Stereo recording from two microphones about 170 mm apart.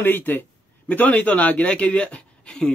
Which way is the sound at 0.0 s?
10° left (ahead or behind).